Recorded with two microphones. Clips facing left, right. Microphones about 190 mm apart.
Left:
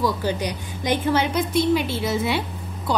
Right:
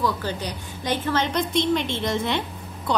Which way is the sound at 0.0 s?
15° left (ahead or behind).